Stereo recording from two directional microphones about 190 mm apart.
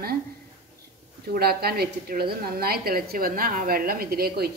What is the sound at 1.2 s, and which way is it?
A woman's voice, 55° right (ahead or behind).